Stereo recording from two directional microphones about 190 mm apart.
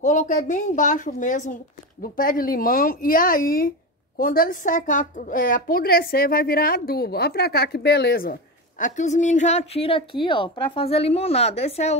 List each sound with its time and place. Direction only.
0.0 s a woman's voice: 40° left (ahead or behind)